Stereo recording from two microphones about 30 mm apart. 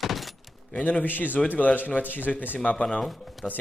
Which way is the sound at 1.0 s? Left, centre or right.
Left.